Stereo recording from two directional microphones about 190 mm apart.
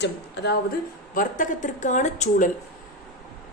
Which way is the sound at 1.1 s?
45° left (ahead or behind).